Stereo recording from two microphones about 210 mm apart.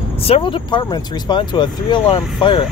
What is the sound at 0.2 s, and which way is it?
Speech, 25° left (ahead or behind).